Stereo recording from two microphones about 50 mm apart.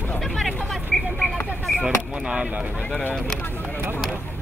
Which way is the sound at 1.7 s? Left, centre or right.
Centre.